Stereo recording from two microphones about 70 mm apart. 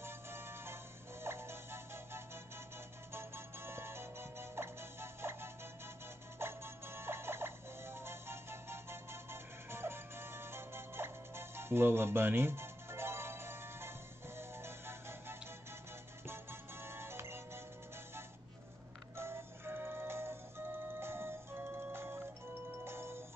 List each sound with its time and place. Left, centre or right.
0.0 s music: right
16.8 s music: right
19.1 s music: right